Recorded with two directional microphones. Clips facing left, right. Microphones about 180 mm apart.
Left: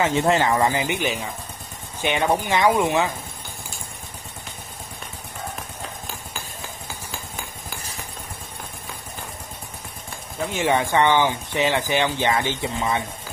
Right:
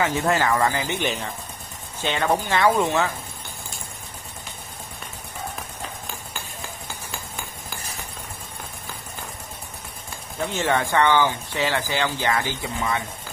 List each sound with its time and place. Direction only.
0.0 s speech: 25° left (ahead or behind)
1.0 s speech: 5° left (ahead or behind)
10.5 s speech: 15° left (ahead or behind)